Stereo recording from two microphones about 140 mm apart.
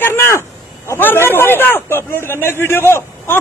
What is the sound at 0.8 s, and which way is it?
A man's voice, 15° left (ahead or behind).